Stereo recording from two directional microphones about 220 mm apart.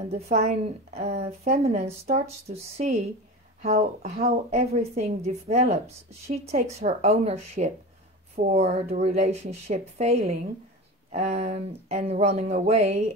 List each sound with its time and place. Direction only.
0.1 s a woman's voice: 30° right (ahead or behind)